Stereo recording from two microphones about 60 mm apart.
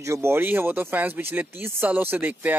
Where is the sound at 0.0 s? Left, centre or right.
Right.